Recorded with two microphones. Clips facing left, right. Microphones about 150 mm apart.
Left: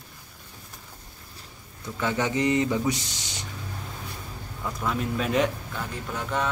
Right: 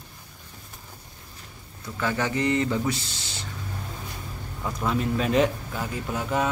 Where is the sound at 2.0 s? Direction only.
20° left (ahead or behind).